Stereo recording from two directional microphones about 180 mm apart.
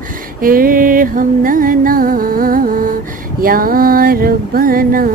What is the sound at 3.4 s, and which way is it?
Female singing, 55° right (ahead or behind).